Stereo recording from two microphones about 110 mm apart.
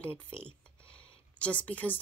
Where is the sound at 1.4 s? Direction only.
15° left (ahead or behind).